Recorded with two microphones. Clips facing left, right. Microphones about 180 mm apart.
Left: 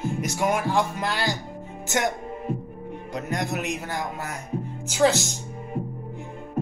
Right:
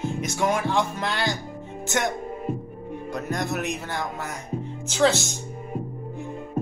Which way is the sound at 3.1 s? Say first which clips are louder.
Even; 15° left (ahead or behind).